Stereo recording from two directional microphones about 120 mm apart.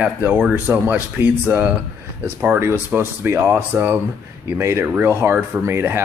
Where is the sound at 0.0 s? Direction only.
15° right (ahead or behind).